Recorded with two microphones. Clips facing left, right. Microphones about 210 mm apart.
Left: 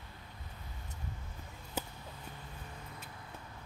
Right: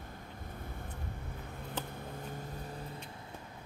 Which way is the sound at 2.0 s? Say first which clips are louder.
Right 7 dB; 45° right (ahead or behind).